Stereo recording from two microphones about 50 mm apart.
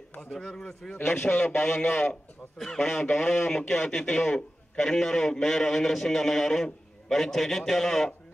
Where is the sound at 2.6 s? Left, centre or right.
Centre.